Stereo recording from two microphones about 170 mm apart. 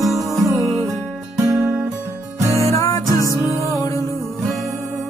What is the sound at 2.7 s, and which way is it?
Music, 20° left (ahead or behind).